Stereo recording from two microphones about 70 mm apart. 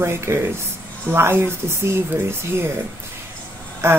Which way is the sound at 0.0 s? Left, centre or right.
Right.